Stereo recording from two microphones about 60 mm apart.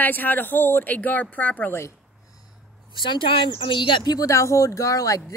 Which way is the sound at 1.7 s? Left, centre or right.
Left.